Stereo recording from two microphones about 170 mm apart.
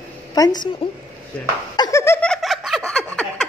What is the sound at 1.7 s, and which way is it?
Laughter, 20° left (ahead or behind).